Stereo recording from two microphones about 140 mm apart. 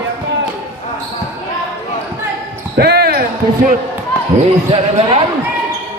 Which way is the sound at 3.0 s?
90° right.